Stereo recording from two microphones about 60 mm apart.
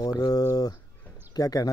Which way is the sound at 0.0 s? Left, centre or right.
Left.